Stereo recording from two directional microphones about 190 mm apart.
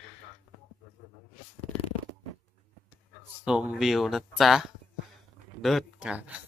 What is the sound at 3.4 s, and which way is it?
Speech, 5° right (ahead or behind).